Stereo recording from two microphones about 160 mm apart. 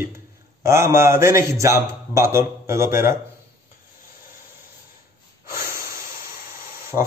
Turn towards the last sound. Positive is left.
turn(degrees=-5)  # may be behind; listen again after turning